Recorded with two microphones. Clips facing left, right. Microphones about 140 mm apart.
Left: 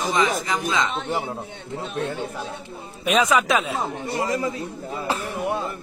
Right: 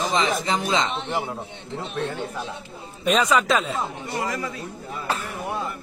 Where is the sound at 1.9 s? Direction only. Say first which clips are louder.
Left 1 dB; 45° left (ahead or behind).